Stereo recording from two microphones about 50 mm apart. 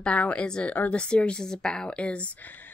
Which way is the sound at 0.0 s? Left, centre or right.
Left.